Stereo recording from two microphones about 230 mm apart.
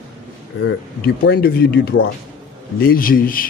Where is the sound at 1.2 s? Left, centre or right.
Left.